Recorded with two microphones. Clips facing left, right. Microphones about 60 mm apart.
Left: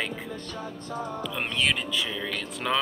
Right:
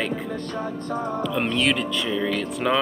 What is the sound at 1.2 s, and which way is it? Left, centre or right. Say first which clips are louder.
Speech: right 5 dB; centre.